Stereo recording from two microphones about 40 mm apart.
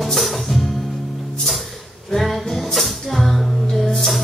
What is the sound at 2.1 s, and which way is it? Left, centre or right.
Music, centre.